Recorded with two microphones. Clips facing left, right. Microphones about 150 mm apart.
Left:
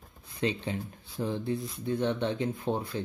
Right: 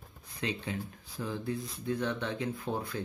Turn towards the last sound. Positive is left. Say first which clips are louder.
# left 4 dB
turn(degrees=25)  # may be behind; listen again after turning